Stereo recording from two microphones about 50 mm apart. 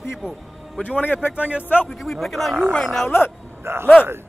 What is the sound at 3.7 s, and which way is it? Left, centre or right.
Speech, right.